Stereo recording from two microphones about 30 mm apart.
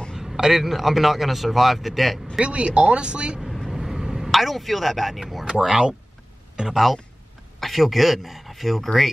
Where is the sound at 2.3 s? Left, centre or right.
Right.